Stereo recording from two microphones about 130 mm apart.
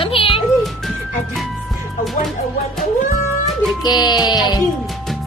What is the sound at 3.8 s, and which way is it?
Music, 30° left (ahead or behind).